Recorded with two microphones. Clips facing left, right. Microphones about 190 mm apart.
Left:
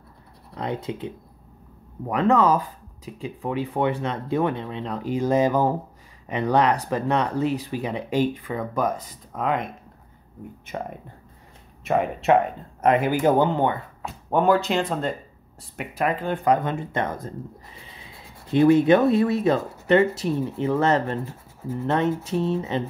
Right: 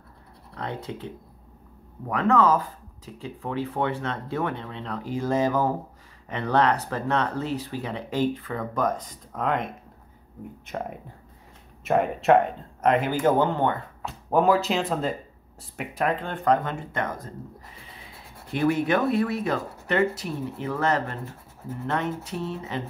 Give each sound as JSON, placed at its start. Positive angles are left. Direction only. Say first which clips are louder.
{"t": 0.6, "sound": "speech", "louder": "left 5 dB", "side_deg": 20}
{"t": 11.8, "sound": "speech", "louder": "even", "side_deg": 0}
{"t": 14.3, "sound": "speech", "louder": "left 1 dB", "side_deg": 0}
{"t": 16.6, "sound": "speech", "louder": "left 4 dB", "side_deg": 25}
{"t": 18.5, "sound": "speech", "louder": "left 7 dB", "side_deg": 25}